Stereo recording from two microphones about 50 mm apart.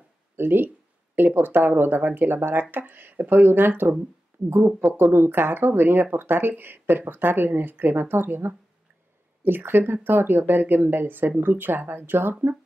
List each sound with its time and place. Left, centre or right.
0.4 s speech: right